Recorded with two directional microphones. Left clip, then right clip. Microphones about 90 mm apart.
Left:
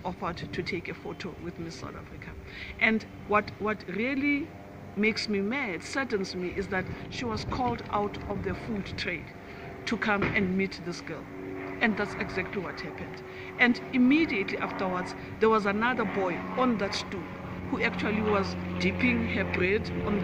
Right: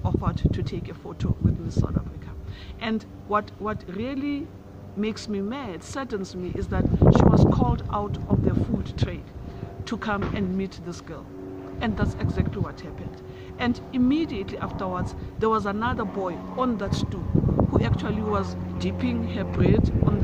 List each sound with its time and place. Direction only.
0.0 s speech: 25° right (ahead or behind)
2.8 s speech: 25° right (ahead or behind)
13.6 s a woman's voice: 25° right (ahead or behind)